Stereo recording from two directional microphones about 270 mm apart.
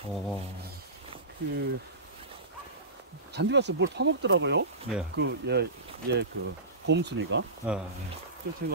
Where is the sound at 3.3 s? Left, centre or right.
Right.